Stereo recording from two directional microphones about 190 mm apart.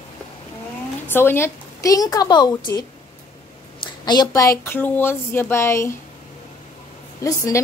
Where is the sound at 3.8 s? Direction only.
20° left (ahead or behind).